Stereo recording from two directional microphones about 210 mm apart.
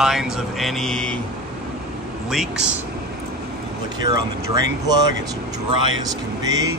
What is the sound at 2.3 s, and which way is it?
Speech, 5° right (ahead or behind).